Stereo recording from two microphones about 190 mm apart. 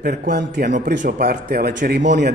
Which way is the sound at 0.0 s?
50° right (ahead or behind).